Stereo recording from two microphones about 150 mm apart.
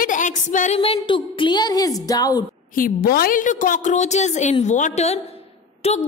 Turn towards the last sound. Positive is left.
turn(degrees=45)  # may be behind; listen again after turning